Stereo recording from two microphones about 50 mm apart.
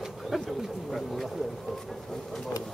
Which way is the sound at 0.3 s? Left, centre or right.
Centre.